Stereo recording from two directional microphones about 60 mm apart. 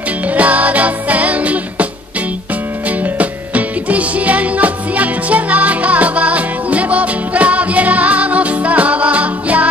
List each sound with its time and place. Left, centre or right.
0.3 s music: right
2.9 s music: right